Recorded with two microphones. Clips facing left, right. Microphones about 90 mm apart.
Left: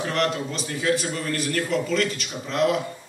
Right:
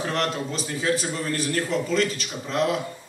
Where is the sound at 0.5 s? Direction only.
25° right (ahead or behind).